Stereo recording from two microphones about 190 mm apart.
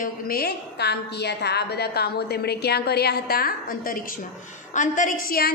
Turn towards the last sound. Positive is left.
turn(degrees=50)  # may be behind; listen again after turning